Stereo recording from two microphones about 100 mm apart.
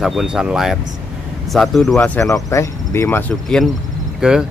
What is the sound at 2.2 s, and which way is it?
Speech, 30° left (ahead or behind).